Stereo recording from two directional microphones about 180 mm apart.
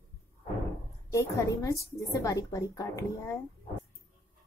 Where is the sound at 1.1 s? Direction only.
15° left (ahead or behind).